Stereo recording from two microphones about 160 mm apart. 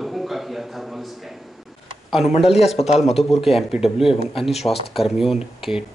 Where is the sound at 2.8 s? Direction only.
40° left (ahead or behind).